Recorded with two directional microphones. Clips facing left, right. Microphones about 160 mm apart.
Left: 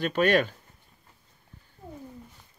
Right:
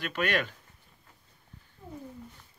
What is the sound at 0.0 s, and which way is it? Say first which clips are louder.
Speech: left 7 dB; 30° left (ahead or behind).